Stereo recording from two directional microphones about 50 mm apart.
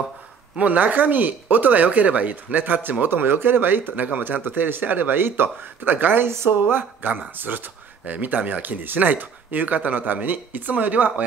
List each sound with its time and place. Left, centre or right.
0.6 s speech: right
4.4 s speech: right